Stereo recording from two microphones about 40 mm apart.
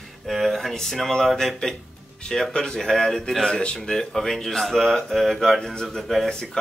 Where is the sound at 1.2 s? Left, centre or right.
Centre.